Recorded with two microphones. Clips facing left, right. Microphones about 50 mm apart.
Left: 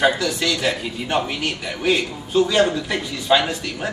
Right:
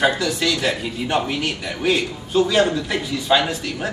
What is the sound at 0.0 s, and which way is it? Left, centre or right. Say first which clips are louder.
Speech: even; centre.